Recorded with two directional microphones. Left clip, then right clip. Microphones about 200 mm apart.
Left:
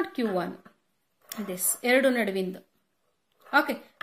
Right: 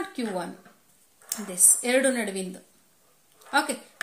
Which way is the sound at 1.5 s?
35° left (ahead or behind).